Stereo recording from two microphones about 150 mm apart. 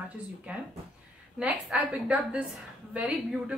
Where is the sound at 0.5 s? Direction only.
10° right (ahead or behind).